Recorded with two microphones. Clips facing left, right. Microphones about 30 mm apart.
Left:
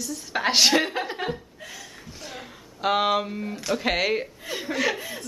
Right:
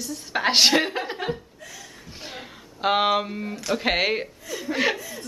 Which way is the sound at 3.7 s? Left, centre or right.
Centre.